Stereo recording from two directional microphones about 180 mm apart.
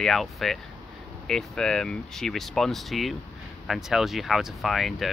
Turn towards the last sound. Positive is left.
turn(degrees=0)  # may be behind; listen again after turning